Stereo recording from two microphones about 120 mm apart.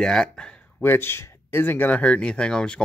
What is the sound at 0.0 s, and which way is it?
Speech, 5° left (ahead or behind).